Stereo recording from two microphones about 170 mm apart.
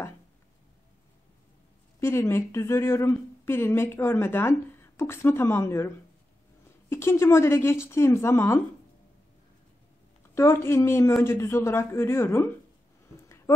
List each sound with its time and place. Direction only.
2.0 s a woman's voice: 15° left (ahead or behind)
10.3 s a woman's voice: 15° left (ahead or behind)